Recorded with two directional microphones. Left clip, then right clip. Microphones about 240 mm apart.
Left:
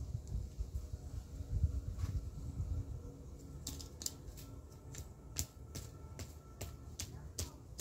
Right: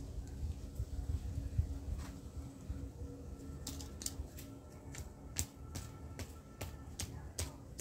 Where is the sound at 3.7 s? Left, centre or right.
Centre.